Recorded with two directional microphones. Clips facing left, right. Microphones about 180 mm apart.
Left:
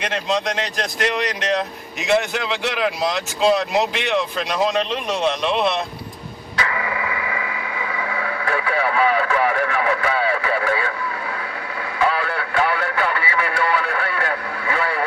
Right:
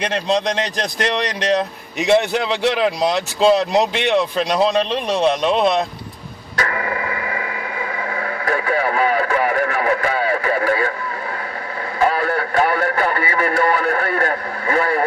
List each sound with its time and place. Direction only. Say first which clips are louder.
0.0 s a man's voice: right 3 dB; 35° right (ahead or behind)
6.5 s radio: right 2 dB; 45° right (ahead or behind)
12.0 s speech: right 3 dB; 45° right (ahead or behind)